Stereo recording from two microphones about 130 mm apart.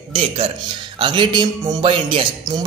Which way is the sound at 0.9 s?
40° right (ahead or behind).